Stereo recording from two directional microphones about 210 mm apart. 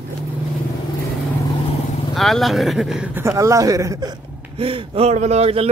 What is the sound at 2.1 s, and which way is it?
A man's voice, centre (ahead or behind).